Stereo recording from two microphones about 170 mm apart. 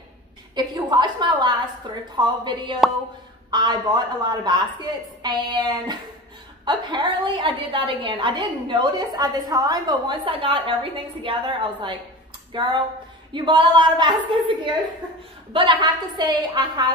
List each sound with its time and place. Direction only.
0.6 s a woman's voice: 25° right (ahead or behind)
15.5 s a woman's voice: 30° right (ahead or behind)